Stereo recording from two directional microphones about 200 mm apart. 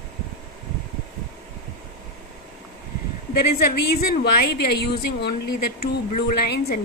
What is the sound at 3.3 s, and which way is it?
A woman's voice, 50° left (ahead or behind).